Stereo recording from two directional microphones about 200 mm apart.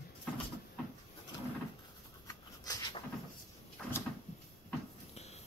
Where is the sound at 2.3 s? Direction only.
15° left (ahead or behind).